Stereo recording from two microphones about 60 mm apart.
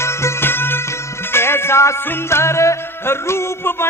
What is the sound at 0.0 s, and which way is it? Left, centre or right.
Music, left.